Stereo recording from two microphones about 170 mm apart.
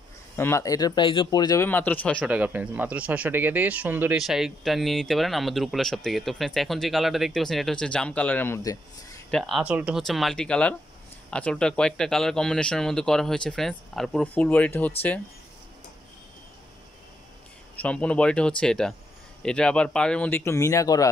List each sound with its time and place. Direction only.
0.4 s speech: 15° left (ahead or behind)
1.7 s speech: 10° left (ahead or behind)
2.2 s speech: 10° right (ahead or behind); by 9.2 s 15° left (ahead or behind)
9.3 s speech: centre (ahead or behind)
17.7 s speech: 5° left (ahead or behind)